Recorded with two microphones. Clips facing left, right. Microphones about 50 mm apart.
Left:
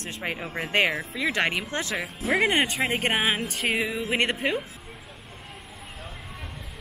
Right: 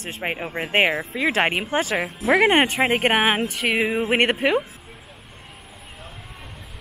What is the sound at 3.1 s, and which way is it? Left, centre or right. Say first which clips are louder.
Music: right 5 dB; right.